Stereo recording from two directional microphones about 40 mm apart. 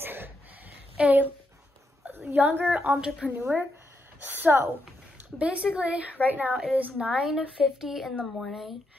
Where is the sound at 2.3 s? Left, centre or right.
Right.